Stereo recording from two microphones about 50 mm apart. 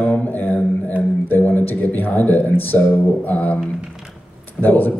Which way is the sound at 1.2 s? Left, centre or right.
Left.